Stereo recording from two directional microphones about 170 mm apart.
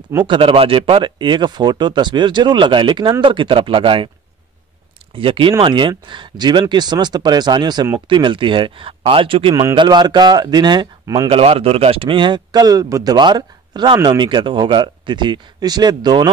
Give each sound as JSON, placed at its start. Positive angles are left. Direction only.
{"t": 0.3, "sound": "speech", "side_deg": -30}
{"t": 5.1, "sound": "speech", "side_deg": -30}
{"t": 11.2, "sound": "speech", "side_deg": -35}